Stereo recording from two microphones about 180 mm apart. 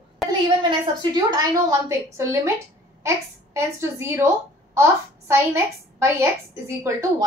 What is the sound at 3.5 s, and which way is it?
A child's voice, 15° right (ahead or behind).